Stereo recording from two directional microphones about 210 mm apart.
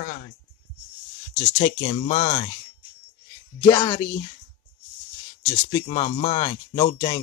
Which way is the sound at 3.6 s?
15° left (ahead or behind).